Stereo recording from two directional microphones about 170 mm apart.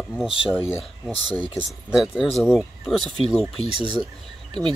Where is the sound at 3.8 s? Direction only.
30° right (ahead or behind).